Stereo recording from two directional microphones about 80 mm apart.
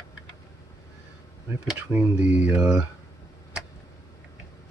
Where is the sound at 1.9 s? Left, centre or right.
Right.